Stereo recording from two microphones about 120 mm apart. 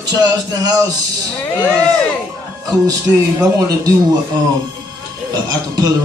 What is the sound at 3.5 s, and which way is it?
Music, 30° right (ahead or behind).